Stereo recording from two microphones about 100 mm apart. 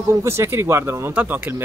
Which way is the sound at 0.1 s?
25° right (ahead or behind).